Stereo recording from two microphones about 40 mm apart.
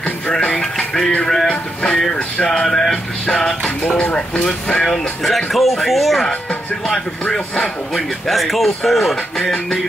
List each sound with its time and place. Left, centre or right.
0.6 s speech: centre
1.2 s music: centre
4.0 s speech: left
4.8 s speech: centre
7.9 s speech: centre
9.1 s music: centre